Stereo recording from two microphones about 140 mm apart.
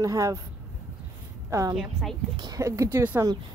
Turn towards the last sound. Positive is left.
turn(degrees=-10)  # may be behind; listen again after turning